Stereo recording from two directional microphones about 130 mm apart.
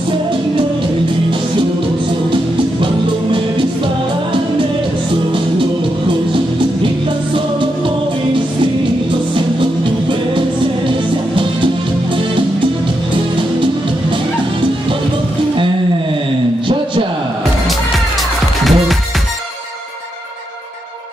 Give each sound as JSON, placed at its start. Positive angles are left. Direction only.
{"t": 2.8, "sound": "music", "side_deg": -40}
{"t": 6.3, "sound": "music", "side_deg": -40}
{"t": 9.3, "sound": "music", "side_deg": -40}
{"t": 18.6, "sound": "music", "side_deg": 0}